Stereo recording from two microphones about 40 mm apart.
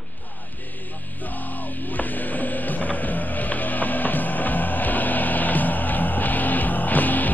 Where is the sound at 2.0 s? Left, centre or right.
Left.